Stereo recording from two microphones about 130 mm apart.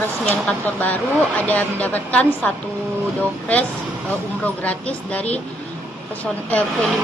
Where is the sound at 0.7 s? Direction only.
15° left (ahead or behind).